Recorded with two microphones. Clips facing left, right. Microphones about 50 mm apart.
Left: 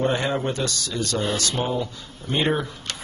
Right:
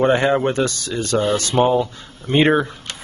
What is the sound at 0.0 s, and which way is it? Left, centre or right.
Speech, right.